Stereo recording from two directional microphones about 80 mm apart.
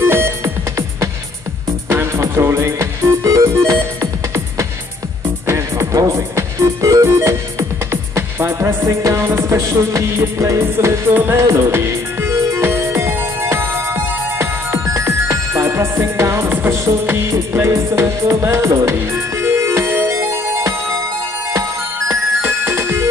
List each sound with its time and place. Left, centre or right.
0.0 s music: right
1.9 s music: right
3.3 s music: right
5.5 s music: right